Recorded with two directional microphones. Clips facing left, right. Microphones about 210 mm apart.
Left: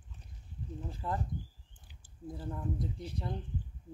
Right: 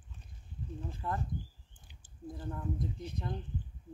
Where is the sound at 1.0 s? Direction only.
20° left (ahead or behind).